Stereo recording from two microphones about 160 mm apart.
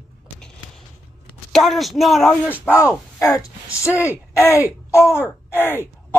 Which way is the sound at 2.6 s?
15° left (ahead or behind).